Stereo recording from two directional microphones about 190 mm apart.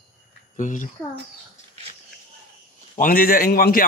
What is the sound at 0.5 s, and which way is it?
Speech, 40° left (ahead or behind).